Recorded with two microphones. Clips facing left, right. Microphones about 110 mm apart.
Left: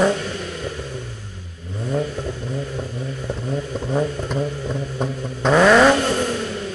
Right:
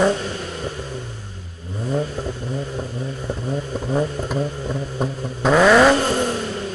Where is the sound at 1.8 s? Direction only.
10° right (ahead or behind).